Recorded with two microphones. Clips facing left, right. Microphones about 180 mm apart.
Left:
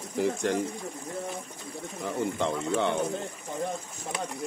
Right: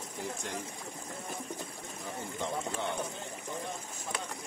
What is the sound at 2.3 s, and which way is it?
Speech, 75° left (ahead or behind).